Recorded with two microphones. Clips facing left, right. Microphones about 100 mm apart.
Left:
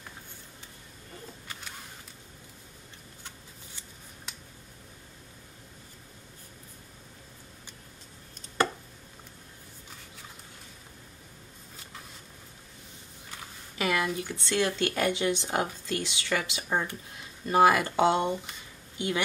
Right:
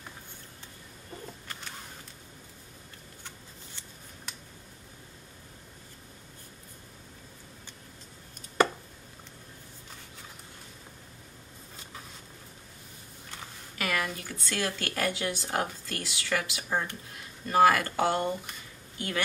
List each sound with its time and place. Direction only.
13.7 s speech: 20° left (ahead or behind)